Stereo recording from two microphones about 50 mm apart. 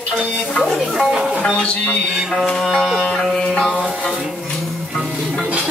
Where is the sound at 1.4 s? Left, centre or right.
Centre.